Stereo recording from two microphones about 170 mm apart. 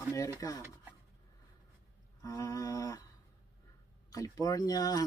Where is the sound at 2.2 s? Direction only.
20° left (ahead or behind).